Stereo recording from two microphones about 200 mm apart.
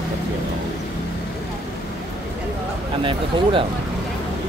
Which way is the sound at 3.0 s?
25° right (ahead or behind).